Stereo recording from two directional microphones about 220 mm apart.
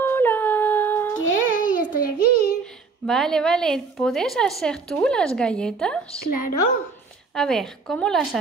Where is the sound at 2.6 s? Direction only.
Centre (ahead or behind).